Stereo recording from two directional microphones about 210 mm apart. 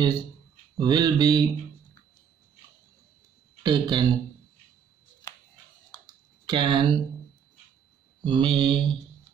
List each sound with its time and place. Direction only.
0.7 s mantra: 20° right (ahead or behind)
3.6 s mantra: 20° right (ahead or behind)
6.4 s mantra: 25° right (ahead or behind)
8.2 s mantra: 25° right (ahead or behind)